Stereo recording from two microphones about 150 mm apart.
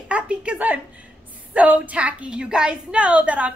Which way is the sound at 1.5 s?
10° right (ahead or behind).